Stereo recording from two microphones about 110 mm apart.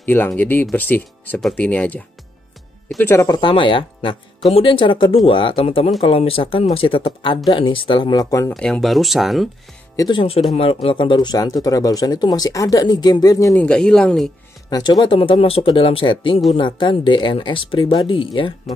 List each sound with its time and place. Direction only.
0.0 s speech: 20° left (ahead or behind)
3.0 s speech: 20° left (ahead or behind)
3.3 s speech: 45° left (ahead or behind); by 8.5 s 30° left (ahead or behind)
8.5 s speech: 5° left (ahead or behind)
9.9 s speech: 40° left (ahead or behind)
10.5 s speech: 60° left (ahead or behind); by 13.6 s 35° left (ahead or behind)
13.6 s speech: 10° left (ahead or behind)
14.7 s speech: 35° left (ahead or behind)
15.1 s speech: 55° left (ahead or behind)